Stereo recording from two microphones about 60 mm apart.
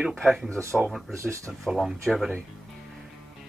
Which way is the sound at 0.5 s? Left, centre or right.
Right.